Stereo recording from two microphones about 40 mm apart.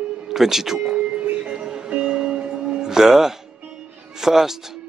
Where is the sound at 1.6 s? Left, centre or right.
Right.